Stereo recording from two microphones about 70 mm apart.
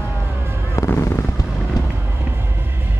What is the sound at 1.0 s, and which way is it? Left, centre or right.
Fireworks, left.